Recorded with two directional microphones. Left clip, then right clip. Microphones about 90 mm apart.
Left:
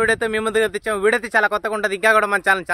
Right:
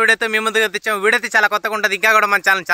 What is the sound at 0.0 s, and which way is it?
Speech, 40° left (ahead or behind).